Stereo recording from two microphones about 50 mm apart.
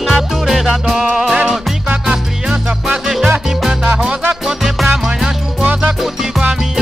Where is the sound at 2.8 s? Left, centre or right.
Centre.